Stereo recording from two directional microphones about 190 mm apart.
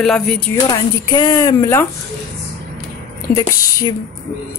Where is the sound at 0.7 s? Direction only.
20° left (ahead or behind).